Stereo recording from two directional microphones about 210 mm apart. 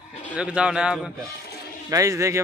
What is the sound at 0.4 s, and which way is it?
Speech, 5° right (ahead or behind).